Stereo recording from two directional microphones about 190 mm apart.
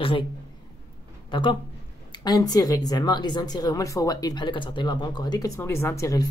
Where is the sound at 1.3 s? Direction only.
25° left (ahead or behind).